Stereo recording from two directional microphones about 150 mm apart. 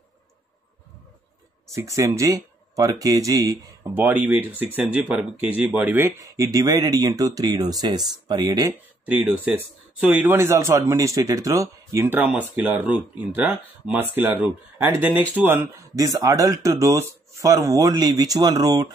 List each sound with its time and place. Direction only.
1.7 s speech: 20° right (ahead or behind)
3.9 s speech: 10° right (ahead or behind)